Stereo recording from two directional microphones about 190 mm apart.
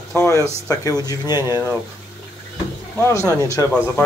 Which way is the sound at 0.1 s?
15° left (ahead or behind).